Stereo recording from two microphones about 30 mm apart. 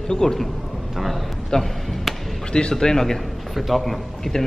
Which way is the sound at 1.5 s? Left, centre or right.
Left.